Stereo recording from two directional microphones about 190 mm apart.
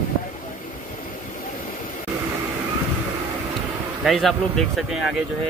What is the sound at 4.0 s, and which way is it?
Speech, centre (ahead or behind).